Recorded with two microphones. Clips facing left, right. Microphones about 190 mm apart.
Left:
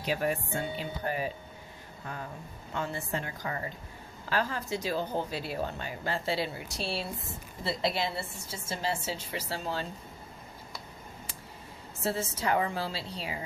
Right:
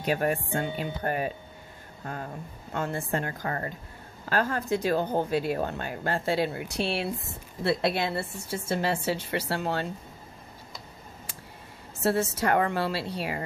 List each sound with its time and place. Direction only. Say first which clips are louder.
0.0 s speech: right 4 dB; 50° right (ahead or behind)
2.7 s a woman's voice: right 4 dB; 50° right (ahead or behind)
12.0 s a woman's voice: right 6 dB; 65° right (ahead or behind)